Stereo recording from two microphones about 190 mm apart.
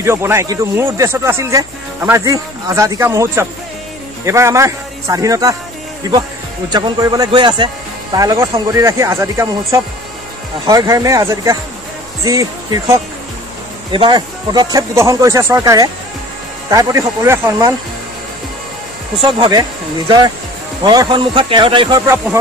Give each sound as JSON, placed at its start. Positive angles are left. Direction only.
{"t": 0.0, "sound": "speech", "side_deg": -15}
{"t": 13.9, "sound": "speech", "side_deg": -25}
{"t": 19.1, "sound": "speech", "side_deg": -25}
{"t": 20.8, "sound": "speech", "side_deg": -20}